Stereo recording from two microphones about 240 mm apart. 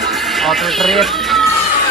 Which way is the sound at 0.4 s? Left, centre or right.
Centre.